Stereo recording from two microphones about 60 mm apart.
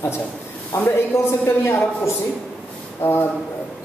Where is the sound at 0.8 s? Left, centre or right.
Left.